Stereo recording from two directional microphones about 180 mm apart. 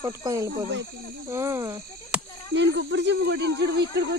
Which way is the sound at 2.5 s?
80° right.